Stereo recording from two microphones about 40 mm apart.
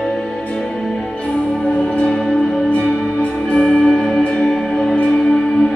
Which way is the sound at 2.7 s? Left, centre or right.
Left.